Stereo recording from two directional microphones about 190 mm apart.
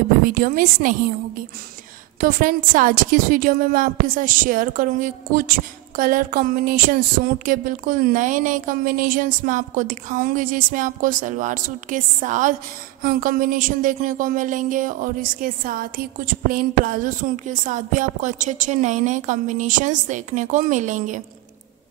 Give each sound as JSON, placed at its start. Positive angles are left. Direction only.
{"t": 0.2, "sound": "a woman's voice", "side_deg": -45}
{"t": 2.1, "sound": "a woman's voice", "side_deg": -50}